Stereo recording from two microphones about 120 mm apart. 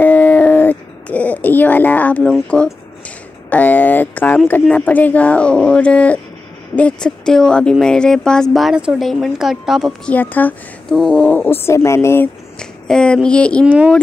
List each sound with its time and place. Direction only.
0.0 s a sound: 10° left (ahead or behind)
2.3 s speech: 10° left (ahead or behind)
10.0 s speech: 15° left (ahead or behind)
11.0 s speech: 5° left (ahead or behind)
11.2 s speech: 15° left (ahead or behind)
12.5 s a sound: 5° left (ahead or behind)